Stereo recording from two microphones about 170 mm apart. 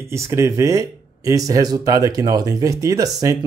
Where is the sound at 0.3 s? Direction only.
20° right (ahead or behind).